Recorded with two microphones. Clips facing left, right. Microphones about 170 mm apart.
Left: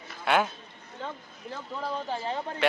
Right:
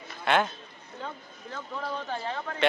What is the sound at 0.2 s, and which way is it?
Speech, 5° left (ahead or behind).